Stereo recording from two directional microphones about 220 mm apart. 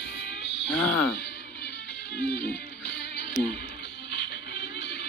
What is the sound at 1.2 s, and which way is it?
Music, 45° left (ahead or behind).